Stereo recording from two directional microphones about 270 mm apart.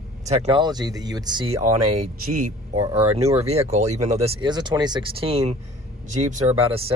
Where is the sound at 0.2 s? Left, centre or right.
Right.